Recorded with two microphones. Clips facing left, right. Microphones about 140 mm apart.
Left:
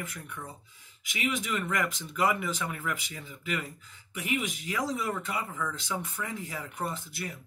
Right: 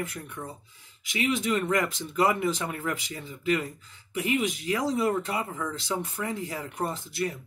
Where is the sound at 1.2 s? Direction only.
35° right (ahead or behind).